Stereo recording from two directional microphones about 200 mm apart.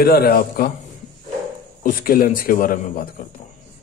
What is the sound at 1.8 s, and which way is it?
A man's voice, 45° left (ahead or behind).